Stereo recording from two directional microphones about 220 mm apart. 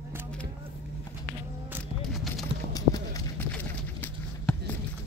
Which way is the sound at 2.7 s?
15° left (ahead or behind).